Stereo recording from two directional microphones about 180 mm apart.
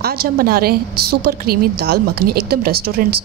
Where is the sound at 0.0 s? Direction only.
55° right (ahead or behind).